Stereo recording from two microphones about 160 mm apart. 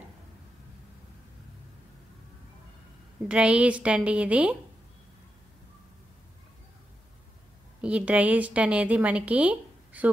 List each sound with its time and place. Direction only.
3.3 s a woman's voice: 5° right (ahead or behind)
7.8 s a woman's voice: 10° right (ahead or behind)